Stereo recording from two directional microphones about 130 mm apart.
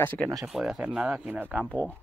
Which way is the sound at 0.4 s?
Centre (ahead or behind).